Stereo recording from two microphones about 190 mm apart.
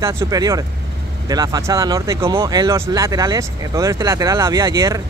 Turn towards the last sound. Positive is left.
turn(degrees=-15)  # may be behind; listen again after turning